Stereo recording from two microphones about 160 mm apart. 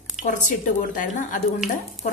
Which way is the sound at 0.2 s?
50° left (ahead or behind).